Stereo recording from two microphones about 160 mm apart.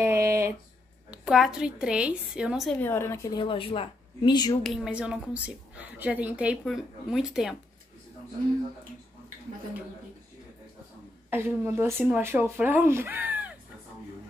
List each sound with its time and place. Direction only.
0.0 s a sound: 15° right (ahead or behind)
1.1 s a woman's voice: 5° right (ahead or behind)
2.8 s a woman's voice: 15° left (ahead or behind)
3.3 s speech: 35° left (ahead or behind)
4.6 s a woman's voice: 5° right (ahead or behind)
11.2 s speech: 15° right (ahead or behind)